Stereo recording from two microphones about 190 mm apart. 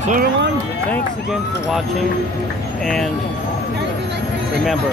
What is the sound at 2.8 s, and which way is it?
Speech, centre (ahead or behind).